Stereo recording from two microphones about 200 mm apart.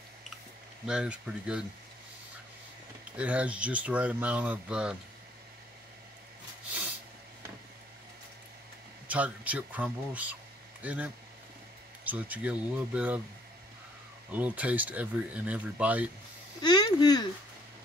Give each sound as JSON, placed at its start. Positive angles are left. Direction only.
{"t": 0.8, "sound": "speech", "side_deg": -5}
{"t": 3.2, "sound": "speech", "side_deg": -5}
{"t": 9.0, "sound": "speech", "side_deg": -5}
{"t": 14.3, "sound": "speech", "side_deg": -10}
{"t": 16.6, "sound": "speech", "side_deg": 20}